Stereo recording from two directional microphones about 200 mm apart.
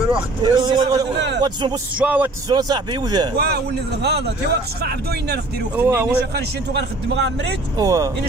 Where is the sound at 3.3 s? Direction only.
55° right (ahead or behind).